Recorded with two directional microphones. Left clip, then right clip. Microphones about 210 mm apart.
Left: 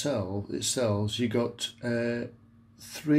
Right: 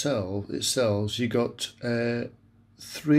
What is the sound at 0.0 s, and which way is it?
Speech, 15° right (ahead or behind).